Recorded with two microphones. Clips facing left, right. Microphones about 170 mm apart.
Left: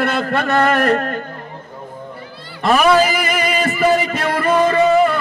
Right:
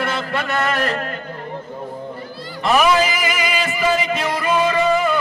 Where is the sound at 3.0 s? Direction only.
60° left (ahead or behind).